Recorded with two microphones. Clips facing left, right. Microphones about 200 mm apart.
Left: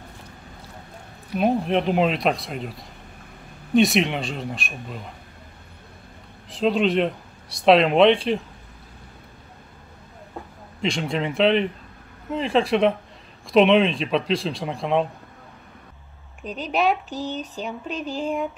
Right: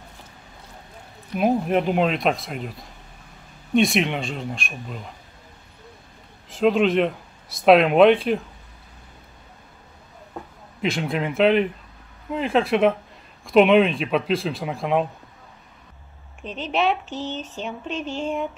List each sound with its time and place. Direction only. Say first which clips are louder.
1.4 s speech: right 1 dB; 5° right (ahead or behind)
3.7 s speech: left 1 dB; centre (ahead or behind)
6.5 s speech: right 2 dB; centre (ahead or behind)
10.8 s speech: even; 5° right (ahead or behind)
16.4 s speech: left 1 dB; 40° left (ahead or behind)
17.6 s speech: even; 5° left (ahead or behind)
17.9 s speech: right 1 dB; 35° left (ahead or behind)
18.2 s speech: left 1 dB; centre (ahead or behind)